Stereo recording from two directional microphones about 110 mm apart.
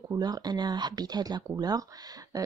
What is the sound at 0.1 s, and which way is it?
Speech, 40° right (ahead or behind).